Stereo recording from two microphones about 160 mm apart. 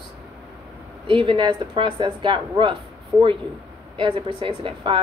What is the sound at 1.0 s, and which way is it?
Speech, 35° right (ahead or behind).